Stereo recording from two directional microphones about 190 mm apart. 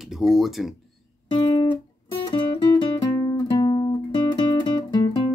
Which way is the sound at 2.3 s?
25° left (ahead or behind).